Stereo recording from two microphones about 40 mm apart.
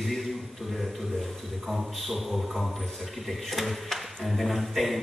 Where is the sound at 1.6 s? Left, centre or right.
Centre.